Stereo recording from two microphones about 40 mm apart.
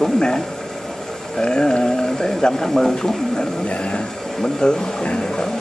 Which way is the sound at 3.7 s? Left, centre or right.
Left.